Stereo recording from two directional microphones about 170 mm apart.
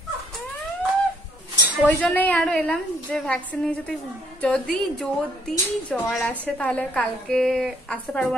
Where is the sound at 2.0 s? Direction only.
10° left (ahead or behind).